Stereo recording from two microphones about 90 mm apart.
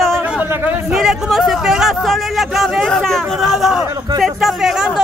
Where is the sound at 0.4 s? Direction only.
20° right (ahead or behind).